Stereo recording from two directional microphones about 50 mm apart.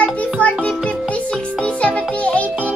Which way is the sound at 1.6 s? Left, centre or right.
Left.